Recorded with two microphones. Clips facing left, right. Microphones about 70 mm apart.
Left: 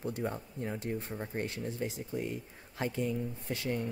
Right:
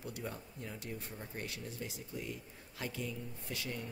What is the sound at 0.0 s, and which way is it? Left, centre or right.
Speech, left.